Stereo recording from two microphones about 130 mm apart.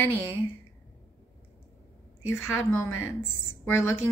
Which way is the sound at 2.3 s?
20° left (ahead or behind).